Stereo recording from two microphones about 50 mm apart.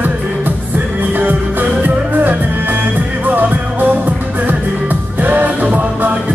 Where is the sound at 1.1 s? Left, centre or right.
Right.